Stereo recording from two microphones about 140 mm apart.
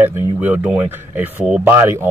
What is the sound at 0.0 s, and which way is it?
Speech, 15° right (ahead or behind).